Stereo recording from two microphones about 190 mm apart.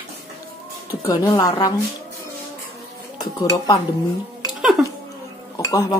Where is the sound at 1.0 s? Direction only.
20° left (ahead or behind).